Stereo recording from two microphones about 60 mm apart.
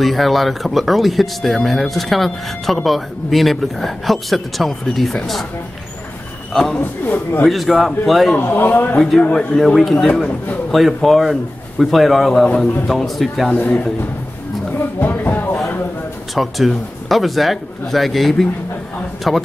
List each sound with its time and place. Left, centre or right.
0.0 s speech: centre
6.5 s speech: centre
8.4 s speech: left
8.9 s speech: centre
9.3 s speech: centre
13.5 s a man's voice: left
15.0 s speech: left
16.3 s speech: centre